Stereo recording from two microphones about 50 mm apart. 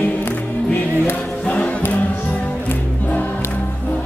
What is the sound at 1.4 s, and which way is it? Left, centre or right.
Music, left.